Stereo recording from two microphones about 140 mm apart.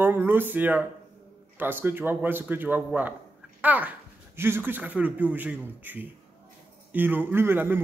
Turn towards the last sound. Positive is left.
turn(degrees=-15)  # may be behind; listen again after turning